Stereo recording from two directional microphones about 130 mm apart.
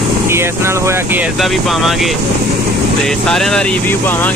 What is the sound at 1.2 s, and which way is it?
Speech, centre (ahead or behind).